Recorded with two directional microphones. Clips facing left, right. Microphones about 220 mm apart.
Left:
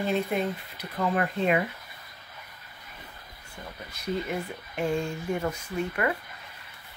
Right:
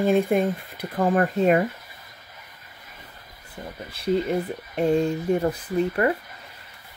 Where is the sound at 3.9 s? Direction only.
30° right (ahead or behind).